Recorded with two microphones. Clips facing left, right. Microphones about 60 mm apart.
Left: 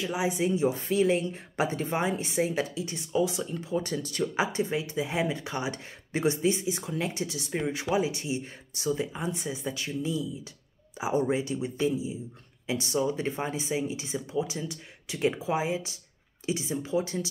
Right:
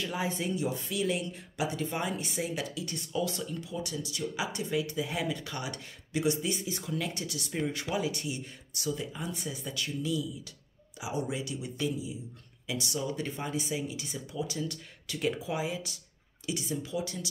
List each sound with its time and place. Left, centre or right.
0.0 s speech: centre
0.7 s speech: left; by 3.4 s centre
3.6 s speech: left
4.4 s speech: left